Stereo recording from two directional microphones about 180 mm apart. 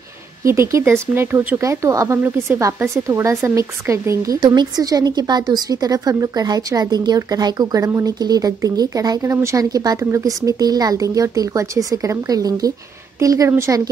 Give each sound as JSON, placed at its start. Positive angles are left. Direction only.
{"t": 0.4, "sound": "a woman's voice", "side_deg": -15}